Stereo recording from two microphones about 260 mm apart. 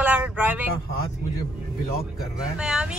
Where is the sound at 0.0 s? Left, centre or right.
Centre.